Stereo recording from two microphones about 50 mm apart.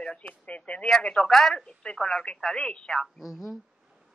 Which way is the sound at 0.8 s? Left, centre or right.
Centre.